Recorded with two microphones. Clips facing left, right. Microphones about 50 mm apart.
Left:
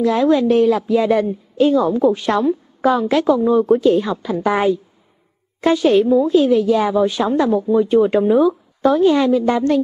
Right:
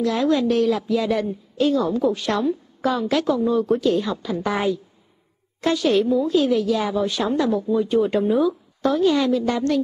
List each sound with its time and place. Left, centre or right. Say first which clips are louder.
0.0 s a woman's voice: left 5 dB; centre